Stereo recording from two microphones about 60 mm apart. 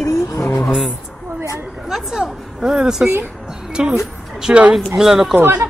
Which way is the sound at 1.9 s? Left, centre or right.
Centre.